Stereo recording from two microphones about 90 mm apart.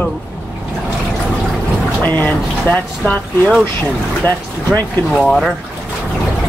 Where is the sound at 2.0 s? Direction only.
20° left (ahead or behind).